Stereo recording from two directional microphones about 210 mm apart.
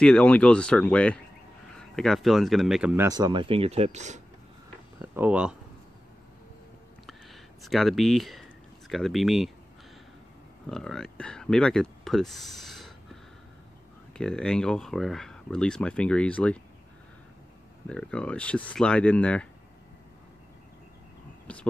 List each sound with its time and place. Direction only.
0.0 s speech: 5° left (ahead or behind)
3.1 s speech: 20° right (ahead or behind)
4.9 s speech: 10° right (ahead or behind)
7.6 s speech: centre (ahead or behind)
10.7 s speech: centre (ahead or behind)
17.8 s speech: 5° left (ahead or behind)
21.5 s speech: 5° left (ahead or behind)